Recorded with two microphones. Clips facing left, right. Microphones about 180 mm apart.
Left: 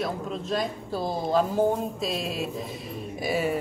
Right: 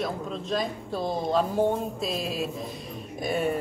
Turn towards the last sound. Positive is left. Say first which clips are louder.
# even
turn(degrees=5)  # may be behind; listen again after turning